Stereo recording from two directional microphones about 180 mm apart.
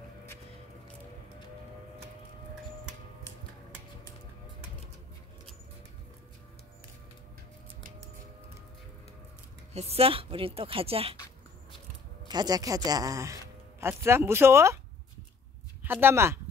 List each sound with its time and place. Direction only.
9.8 s a woman's voice: 35° right (ahead or behind)
12.3 s a man's voice: 20° right (ahead or behind)
15.8 s speech: 10° right (ahead or behind)